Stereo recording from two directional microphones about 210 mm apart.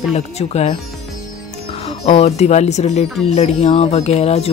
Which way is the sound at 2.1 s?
30° left (ahead or behind).